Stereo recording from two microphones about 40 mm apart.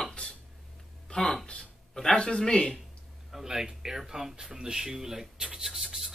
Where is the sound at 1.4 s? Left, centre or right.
Left.